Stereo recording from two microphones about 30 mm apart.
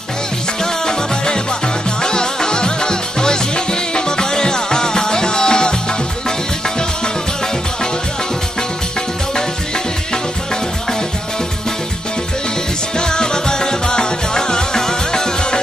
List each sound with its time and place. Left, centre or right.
0.6 s music: left
12.9 s music: left